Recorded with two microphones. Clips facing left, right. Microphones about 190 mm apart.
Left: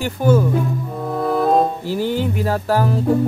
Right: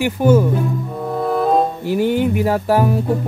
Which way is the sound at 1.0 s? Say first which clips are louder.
Even; centre (ahead or behind).